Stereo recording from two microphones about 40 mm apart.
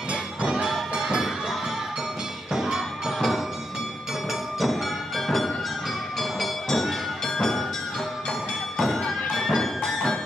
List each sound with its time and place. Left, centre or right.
0.1 s music: right
0.7 s music: centre